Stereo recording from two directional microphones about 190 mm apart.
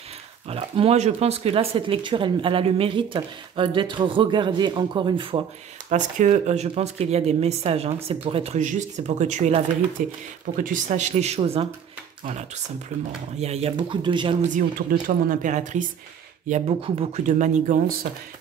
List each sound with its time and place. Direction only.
0.5 s speech: 30° right (ahead or behind)
5.9 s speech: 40° right (ahead or behind)
9.9 s speech: 45° right (ahead or behind)
12.9 s speech: 35° right (ahead or behind)
14.5 s speech: 45° right (ahead or behind)